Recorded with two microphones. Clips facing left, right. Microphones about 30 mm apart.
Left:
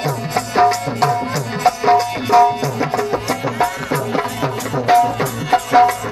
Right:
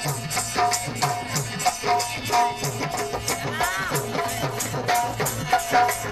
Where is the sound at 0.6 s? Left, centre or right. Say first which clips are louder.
Left 9 dB; centre.